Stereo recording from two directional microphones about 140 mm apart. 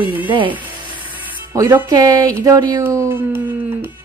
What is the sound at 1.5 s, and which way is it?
A woman's voice, 25° right (ahead or behind).